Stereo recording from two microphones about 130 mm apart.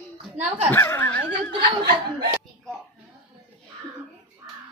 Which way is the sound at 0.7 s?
20° left (ahead or behind).